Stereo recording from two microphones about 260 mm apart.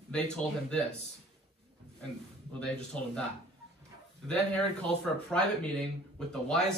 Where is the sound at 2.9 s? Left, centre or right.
Centre.